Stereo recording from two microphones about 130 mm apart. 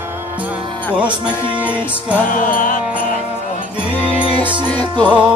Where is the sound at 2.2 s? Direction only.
90° left.